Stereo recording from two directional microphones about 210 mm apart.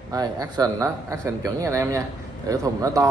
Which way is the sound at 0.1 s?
20° right (ahead or behind).